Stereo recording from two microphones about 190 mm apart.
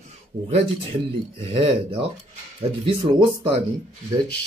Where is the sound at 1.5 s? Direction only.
30° right (ahead or behind).